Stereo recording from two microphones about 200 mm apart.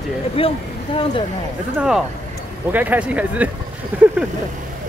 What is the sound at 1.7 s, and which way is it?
Speech, 5° right (ahead or behind).